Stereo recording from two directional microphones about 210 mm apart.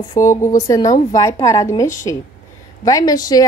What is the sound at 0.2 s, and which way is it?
Speech, 15° left (ahead or behind).